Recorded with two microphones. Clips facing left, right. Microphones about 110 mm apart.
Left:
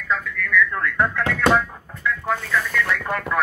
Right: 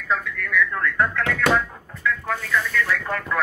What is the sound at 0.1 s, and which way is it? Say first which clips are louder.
Radio: left 1 dB; 5° right (ahead or behind).